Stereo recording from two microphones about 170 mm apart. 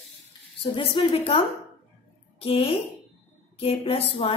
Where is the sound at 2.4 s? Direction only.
35° left (ahead or behind).